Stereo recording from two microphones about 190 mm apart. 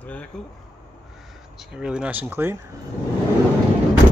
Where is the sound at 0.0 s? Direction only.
10° left (ahead or behind).